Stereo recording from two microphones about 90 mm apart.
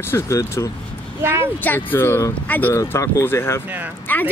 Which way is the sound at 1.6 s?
20° left (ahead or behind).